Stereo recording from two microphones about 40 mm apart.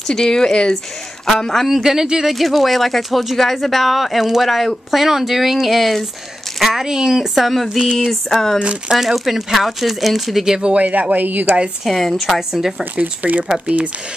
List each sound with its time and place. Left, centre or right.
0.1 s speech: centre
1.7 s speech: centre
7.3 s speech: centre
7.8 s speech: centre
8.1 s speech: centre
8.9 s speech: centre
10.6 s speech: right
11.8 s speech: centre
13.0 s speech: right
13.5 s speech: right